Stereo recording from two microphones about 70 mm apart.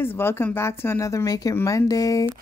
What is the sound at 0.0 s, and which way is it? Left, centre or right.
A woman's voice, left.